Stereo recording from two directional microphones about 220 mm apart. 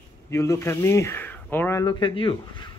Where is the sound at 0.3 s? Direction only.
15° left (ahead or behind).